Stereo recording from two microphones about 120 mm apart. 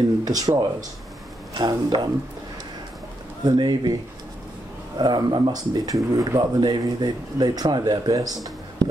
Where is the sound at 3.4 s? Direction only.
35° right (ahead or behind).